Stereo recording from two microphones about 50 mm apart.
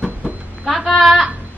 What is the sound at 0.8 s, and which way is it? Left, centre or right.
Speech, centre.